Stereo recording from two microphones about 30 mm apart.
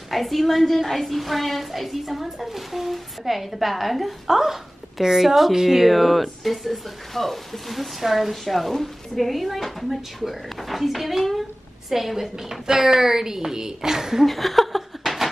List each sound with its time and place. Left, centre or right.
0.1 s a woman's voice: centre
5.9 s a woman's voice: centre
12.6 s a woman's voice: centre
14.2 s laughter: centre